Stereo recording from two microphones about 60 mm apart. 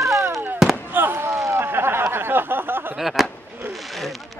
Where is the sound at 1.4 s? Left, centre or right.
Right.